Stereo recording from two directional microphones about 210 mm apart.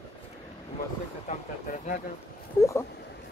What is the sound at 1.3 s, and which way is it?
Speech, 35° left (ahead or behind).